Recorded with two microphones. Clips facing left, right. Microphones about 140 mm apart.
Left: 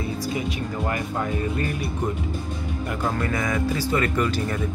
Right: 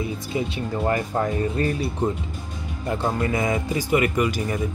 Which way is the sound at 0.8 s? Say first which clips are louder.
Right 5 dB; 35° right (ahead or behind).